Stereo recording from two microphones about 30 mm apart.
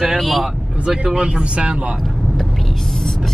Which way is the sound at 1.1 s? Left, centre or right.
Right.